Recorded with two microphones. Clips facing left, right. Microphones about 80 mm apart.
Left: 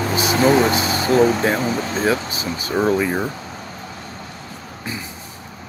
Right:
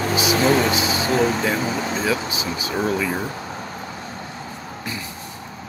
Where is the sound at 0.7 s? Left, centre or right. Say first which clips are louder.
Left 4 dB; left.